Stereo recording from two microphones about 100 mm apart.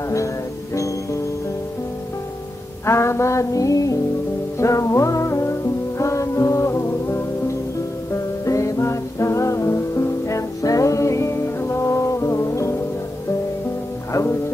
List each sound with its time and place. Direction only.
2.8 s music: 25° left (ahead or behind)
8.5 s music: 30° left (ahead or behind)